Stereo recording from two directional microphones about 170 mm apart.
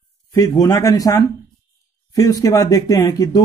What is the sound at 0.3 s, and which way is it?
Speech, 20° left (ahead or behind).